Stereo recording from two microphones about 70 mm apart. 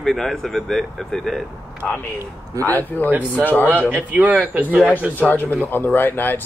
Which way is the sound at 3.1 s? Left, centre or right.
Right.